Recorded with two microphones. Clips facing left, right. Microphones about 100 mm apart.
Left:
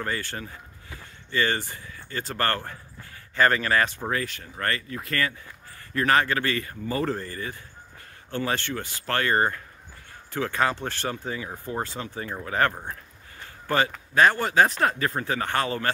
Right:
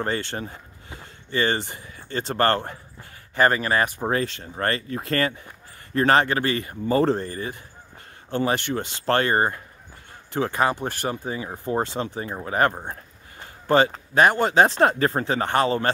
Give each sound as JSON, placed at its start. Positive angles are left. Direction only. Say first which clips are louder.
{"t": 0.0, "sound": "speech", "louder": "right 4 dB", "side_deg": -25}